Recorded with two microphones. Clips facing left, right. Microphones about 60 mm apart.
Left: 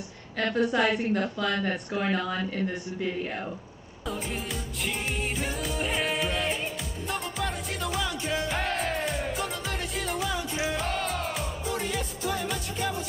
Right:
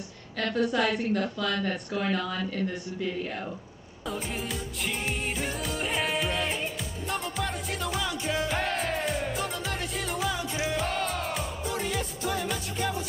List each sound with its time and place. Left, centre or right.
0.6 s speech: centre
4.0 s music: centre